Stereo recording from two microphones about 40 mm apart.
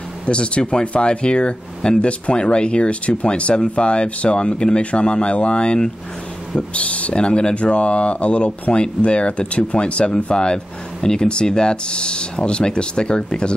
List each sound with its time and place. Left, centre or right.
0.3 s speech: left